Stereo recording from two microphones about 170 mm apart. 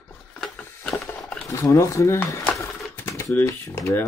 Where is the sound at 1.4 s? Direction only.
20° left (ahead or behind).